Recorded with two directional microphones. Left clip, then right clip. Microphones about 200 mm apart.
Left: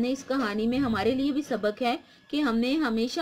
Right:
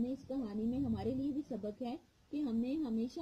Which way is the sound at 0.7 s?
35° left (ahead or behind).